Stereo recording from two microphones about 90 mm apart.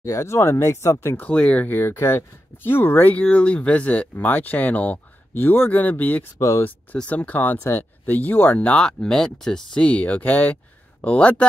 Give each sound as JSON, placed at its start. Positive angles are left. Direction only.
{"t": 0.0, "sound": "speech", "side_deg": 35}
{"t": 1.2, "sound": "speech", "side_deg": 15}
{"t": 6.3, "sound": "speech", "side_deg": 30}
{"t": 7.0, "sound": "speech", "side_deg": 15}